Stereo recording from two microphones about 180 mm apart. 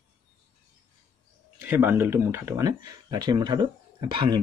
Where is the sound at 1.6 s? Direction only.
10° right (ahead or behind).